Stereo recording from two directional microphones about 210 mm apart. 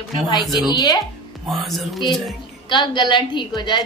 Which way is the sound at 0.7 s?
20° left (ahead or behind).